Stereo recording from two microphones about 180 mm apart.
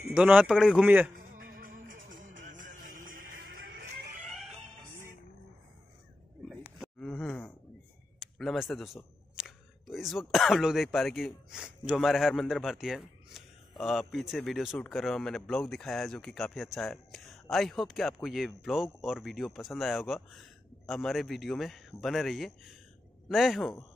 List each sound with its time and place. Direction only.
0.1 s speech: 5° right (ahead or behind)
1.1 s music: 50° right (ahead or behind)
2.2 s music: 90° right
2.9 s music: 50° right (ahead or behind)
4.3 s music: centre (ahead or behind)
6.8 s groan: 5° left (ahead or behind)
8.2 s speech: centre (ahead or behind)